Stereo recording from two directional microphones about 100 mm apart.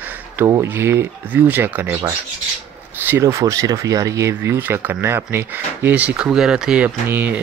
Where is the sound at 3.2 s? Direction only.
30° right (ahead or behind).